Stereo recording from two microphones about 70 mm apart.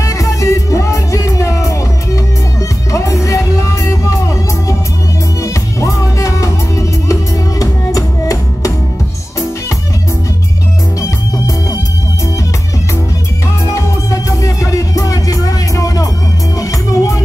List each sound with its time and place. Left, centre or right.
0.0 s music: left
11.0 s music: left
13.7 s music: left